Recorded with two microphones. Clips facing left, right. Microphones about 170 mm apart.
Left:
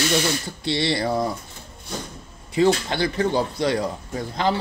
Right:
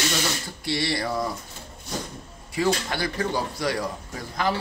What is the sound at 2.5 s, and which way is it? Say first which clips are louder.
Speech: left 5 dB; 25° left (ahead or behind).